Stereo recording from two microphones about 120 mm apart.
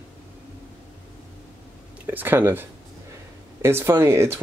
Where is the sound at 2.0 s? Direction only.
15° right (ahead or behind).